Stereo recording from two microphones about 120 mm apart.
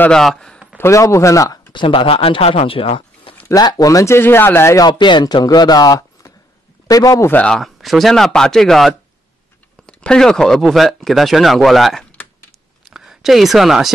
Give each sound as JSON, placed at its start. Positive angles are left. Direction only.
{"t": 0.0, "sound": "speech", "side_deg": 5}
{"t": 0.7, "sound": "speech", "side_deg": 25}
{"t": 1.7, "sound": "speech", "side_deg": 45}
{"t": 3.4, "sound": "speech", "side_deg": 35}
{"t": 4.8, "sound": "speech", "side_deg": 40}
{"t": 7.3, "sound": "speech", "side_deg": 5}